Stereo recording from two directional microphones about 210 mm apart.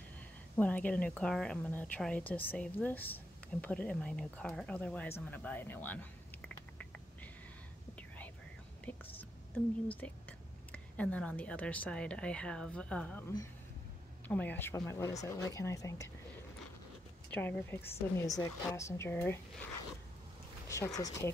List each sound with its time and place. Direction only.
0.6 s speech: 5° left (ahead or behind)
5.2 s a sound: 5° left (ahead or behind)
8.9 s speech: 5° left (ahead or behind)
14.2 s speech: 10° left (ahead or behind)
17.3 s speech: 10° left (ahead or behind)
20.6 s speech: 15° left (ahead or behind)